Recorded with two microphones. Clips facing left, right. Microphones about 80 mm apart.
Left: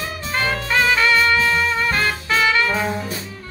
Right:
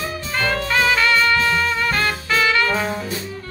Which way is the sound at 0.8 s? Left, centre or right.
Centre.